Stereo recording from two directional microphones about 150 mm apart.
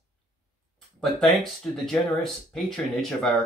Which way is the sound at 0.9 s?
Centre (ahead or behind).